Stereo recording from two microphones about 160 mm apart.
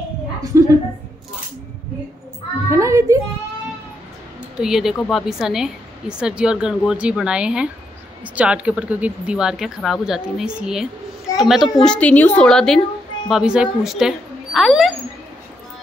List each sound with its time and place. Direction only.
0.5 s a woman's voice: 20° right (ahead or behind)
2.7 s a child's voice: 20° right (ahead or behind)
4.6 s a woman's voice: 5° right (ahead or behind)